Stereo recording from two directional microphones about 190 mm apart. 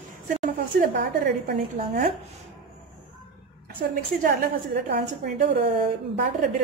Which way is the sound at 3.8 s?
55° right (ahead or behind).